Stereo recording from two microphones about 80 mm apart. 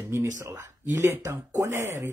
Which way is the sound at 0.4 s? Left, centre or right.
Right.